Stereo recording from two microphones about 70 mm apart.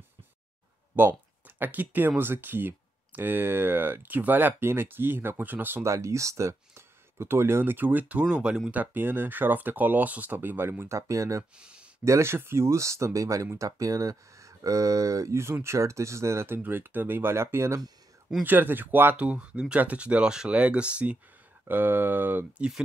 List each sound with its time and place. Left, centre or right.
1.0 s speech: right
5.9 s speech: right; by 8.7 s centre
8.7 s speech: right
11.5 s speech: centre
12.0 s speech: right
18.4 s speech: right
19.2 s speech: centre
21.6 s speech: right